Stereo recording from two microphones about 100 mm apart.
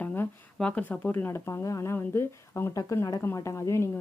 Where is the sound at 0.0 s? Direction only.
20° left (ahead or behind).